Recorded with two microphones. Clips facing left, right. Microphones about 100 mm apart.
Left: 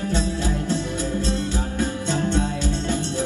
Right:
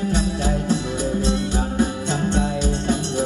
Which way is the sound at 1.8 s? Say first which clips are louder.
Right 2 dB; 15° right (ahead or behind).